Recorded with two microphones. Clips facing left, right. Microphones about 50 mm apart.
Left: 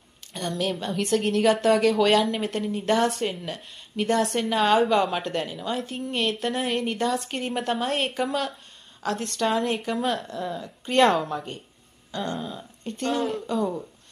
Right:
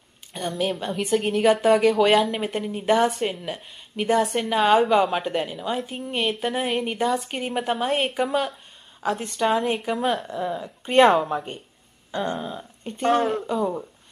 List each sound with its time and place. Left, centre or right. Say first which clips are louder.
0.3 s a woman's voice: right 2 dB; centre